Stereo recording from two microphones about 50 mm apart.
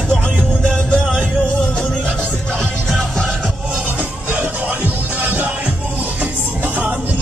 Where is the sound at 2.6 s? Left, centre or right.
Centre.